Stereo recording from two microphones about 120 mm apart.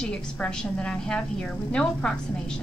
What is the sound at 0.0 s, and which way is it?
A woman's voice, 10° left (ahead or behind).